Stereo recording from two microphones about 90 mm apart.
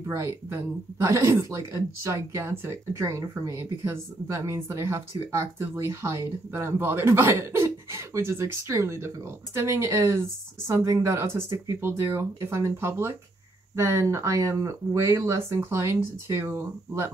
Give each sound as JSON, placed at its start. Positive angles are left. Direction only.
{"t": 0.1, "sound": "speech", "side_deg": -35}